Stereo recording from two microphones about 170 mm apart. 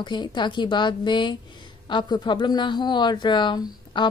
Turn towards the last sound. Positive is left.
turn(degrees=25)  # may be behind; listen again after turning